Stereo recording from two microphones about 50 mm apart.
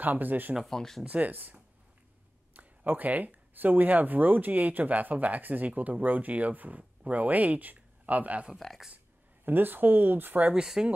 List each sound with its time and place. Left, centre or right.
0.0 s speech: right
0.7 s speech: centre
1.0 s speech: right
8.5 s speech: centre
8.9 s speech: right
10.5 s speech: centre